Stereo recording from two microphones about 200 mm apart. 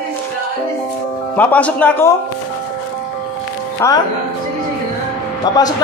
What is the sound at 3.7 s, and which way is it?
Speech, 15° left (ahead or behind).